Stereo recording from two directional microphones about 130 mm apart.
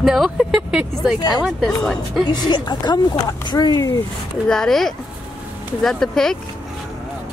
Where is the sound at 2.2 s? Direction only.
35° left (ahead or behind).